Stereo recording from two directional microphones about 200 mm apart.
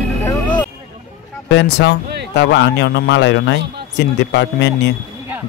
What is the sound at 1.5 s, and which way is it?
A man's voice, 60° left (ahead or behind).